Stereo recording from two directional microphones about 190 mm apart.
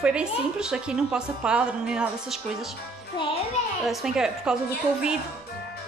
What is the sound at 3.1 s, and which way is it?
Speech, 25° left (ahead or behind).